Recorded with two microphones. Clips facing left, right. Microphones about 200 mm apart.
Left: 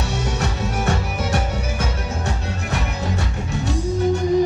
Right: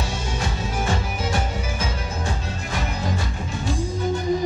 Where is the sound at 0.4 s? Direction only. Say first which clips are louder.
Left 3 dB; 70° left (ahead or behind).